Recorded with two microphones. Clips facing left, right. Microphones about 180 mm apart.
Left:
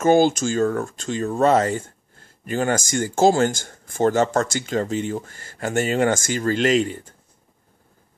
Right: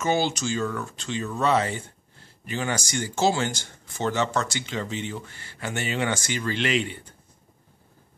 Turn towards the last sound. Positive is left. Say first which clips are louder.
# left 7 dB
turn(degrees=40)  # may be behind; listen again after turning